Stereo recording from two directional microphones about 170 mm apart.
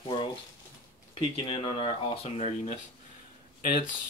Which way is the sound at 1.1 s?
35° left (ahead or behind).